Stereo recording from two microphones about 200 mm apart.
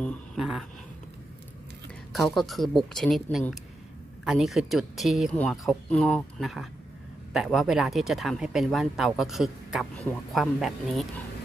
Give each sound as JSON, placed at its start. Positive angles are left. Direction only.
{"t": 0.0, "sound": "speech", "side_deg": 0}
{"t": 2.1, "sound": "speech", "side_deg": 0}